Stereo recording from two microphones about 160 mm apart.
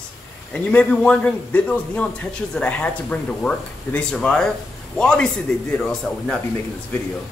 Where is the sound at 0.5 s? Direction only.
5° left (ahead or behind).